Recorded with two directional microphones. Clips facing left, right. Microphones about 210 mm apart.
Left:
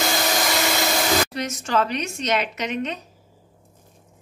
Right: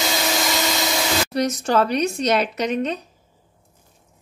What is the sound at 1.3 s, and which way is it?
Speech, 35° right (ahead or behind).